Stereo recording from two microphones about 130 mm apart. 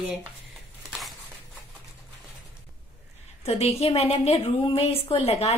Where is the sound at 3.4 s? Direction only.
50° left (ahead or behind).